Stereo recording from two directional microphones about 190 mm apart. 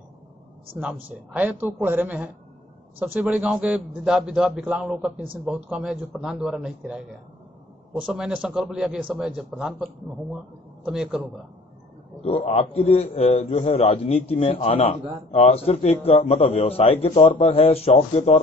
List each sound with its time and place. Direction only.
0.7 s a woman's voice: 5° right (ahead or behind)
10.9 s a man's voice: 5° right (ahead or behind)
12.2 s a man's voice: 30° left (ahead or behind)